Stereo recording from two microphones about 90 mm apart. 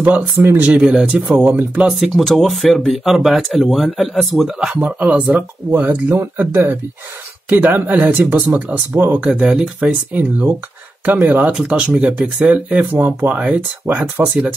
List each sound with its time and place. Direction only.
0.0 s speech: 20° right (ahead or behind)
0.7 s speech: 10° right (ahead or behind)
1.9 s speech: centre (ahead or behind)
4.7 s speech: 15° right (ahead or behind)
9.2 s speech: 10° right (ahead or behind)
11.5 s speech: 10° right (ahead or behind)